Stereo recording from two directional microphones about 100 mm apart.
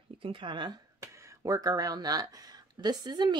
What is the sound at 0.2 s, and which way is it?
Speech, 60° right (ahead or behind).